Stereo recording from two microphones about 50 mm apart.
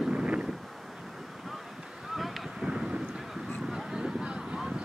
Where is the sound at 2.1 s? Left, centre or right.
Centre.